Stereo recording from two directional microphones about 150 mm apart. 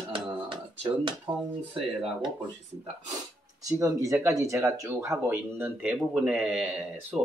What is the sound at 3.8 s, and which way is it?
Speech, 20° right (ahead or behind).